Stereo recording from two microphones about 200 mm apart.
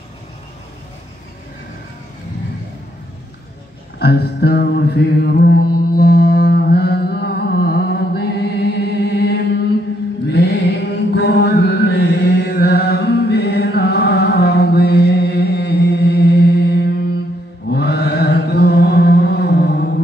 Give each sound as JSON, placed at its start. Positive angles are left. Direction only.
{"t": 4.0, "sound": "mantra", "side_deg": 55}
{"t": 17.7, "sound": "chant", "side_deg": 55}